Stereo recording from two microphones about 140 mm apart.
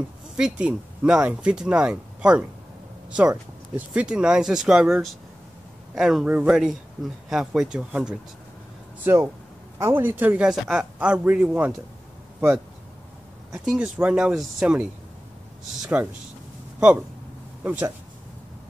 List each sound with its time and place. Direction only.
0.4 s speech: 10° right (ahead or behind)
3.7 s speech: 10° right (ahead or behind)
9.0 s speech: 20° right (ahead or behind)
13.5 s speech: 5° right (ahead or behind)
17.6 s speech: 15° right (ahead or behind)